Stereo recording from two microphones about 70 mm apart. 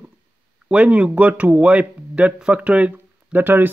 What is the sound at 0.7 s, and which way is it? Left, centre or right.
Speech, centre.